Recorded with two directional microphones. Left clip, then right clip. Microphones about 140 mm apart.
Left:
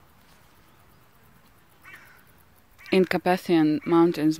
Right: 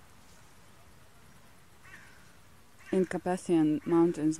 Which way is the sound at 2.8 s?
20° left (ahead or behind).